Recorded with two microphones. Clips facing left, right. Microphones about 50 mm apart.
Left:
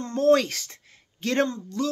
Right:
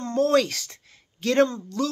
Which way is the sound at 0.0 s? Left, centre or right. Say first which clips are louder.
Left 1 dB; left.